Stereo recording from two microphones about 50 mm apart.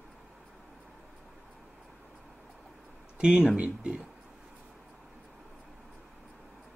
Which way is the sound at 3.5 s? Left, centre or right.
Right.